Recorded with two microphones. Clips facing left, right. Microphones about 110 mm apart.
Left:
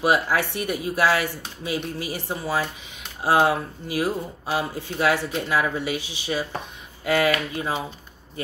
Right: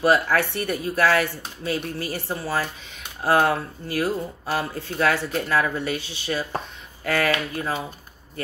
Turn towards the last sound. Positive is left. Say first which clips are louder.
# left 1 dB
turn(degrees=15)  # may be behind; listen again after turning